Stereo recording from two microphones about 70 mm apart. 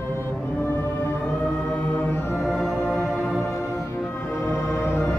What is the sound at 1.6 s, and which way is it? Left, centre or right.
Music, left.